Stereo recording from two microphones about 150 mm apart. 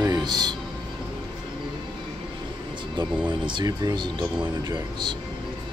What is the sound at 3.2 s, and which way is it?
Speech, 30° right (ahead or behind).